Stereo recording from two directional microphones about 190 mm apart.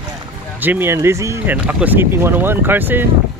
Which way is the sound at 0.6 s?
10° right (ahead or behind).